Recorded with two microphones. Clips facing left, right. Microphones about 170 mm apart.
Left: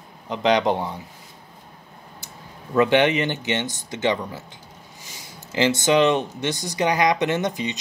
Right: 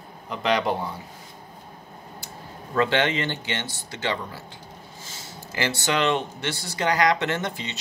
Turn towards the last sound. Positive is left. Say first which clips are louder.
# left 5 dB
turn(degrees=15)  # may be behind; listen again after turning